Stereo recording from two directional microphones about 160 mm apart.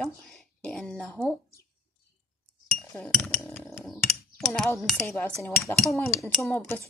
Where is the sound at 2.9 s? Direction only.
5° left (ahead or behind).